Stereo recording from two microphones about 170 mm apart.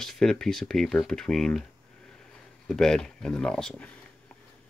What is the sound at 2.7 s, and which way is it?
Speech, 5° left (ahead or behind).